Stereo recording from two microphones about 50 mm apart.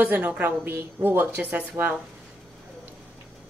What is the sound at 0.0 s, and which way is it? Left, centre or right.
A woman's voice, right.